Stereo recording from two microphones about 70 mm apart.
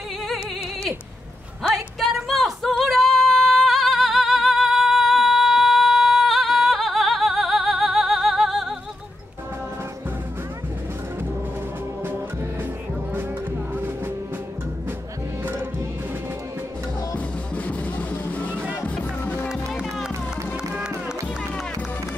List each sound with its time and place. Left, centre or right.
2.0 s a sound: centre
2.8 s music: centre
13.7 s music: right
15.4 s music: right
17.6 s music: left